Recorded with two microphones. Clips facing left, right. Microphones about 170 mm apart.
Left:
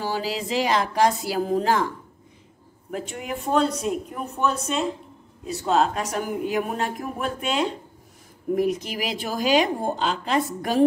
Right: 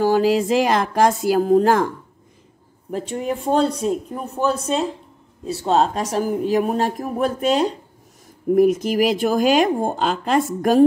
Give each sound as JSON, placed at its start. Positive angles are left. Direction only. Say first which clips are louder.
{"t": 0.0, "sound": "a woman's voice", "louder": "right 11 dB", "side_deg": -50}
{"t": 2.9, "sound": "a woman's voice", "louder": "right 6 dB", "side_deg": -35}